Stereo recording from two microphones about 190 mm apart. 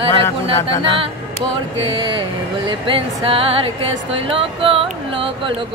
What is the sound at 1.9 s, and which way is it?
Speech, 25° right (ahead or behind).